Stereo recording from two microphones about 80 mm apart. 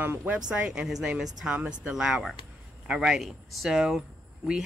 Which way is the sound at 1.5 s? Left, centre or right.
Centre.